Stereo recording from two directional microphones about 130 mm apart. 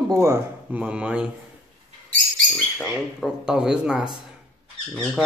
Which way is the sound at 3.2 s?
5° right (ahead or behind).